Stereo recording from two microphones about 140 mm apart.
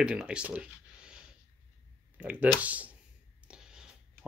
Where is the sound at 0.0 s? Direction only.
10° right (ahead or behind).